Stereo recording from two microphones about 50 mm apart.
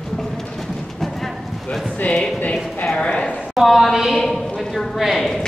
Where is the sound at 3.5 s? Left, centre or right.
Centre.